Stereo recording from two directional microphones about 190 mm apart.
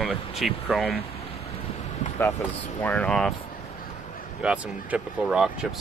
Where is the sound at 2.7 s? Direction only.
10° left (ahead or behind).